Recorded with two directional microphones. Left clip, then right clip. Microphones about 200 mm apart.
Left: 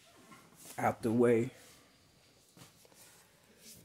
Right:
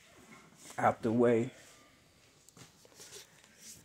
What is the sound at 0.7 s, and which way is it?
Speech, 10° left (ahead or behind).